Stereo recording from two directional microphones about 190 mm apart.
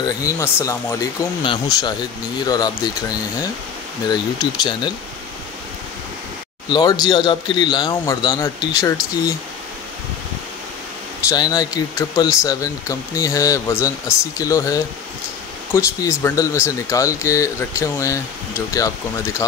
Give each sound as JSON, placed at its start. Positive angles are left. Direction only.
{"t": 0.0, "sound": "speech", "side_deg": 20}
{"t": 6.7, "sound": "speech", "side_deg": 20}
{"t": 11.2, "sound": "speech", "side_deg": 20}